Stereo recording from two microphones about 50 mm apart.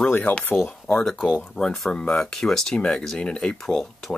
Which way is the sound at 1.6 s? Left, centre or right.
Left.